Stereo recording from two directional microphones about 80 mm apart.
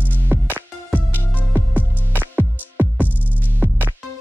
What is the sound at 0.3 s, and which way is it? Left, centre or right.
Music, right.